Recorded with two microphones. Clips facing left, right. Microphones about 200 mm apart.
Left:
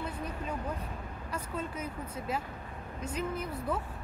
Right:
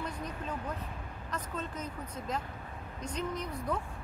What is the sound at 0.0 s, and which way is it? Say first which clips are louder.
Music: left 1 dB; 10° left (ahead or behind).